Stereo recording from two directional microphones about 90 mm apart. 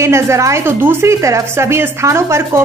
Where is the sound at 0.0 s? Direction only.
30° right (ahead or behind).